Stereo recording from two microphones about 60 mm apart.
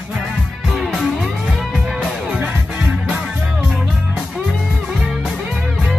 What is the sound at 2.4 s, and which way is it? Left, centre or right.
Music, right.